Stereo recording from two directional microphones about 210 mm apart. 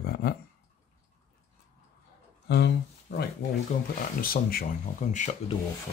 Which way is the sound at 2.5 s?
50° left (ahead or behind).